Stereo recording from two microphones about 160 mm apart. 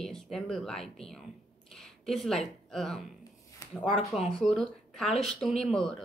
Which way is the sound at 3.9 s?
40° left (ahead or behind).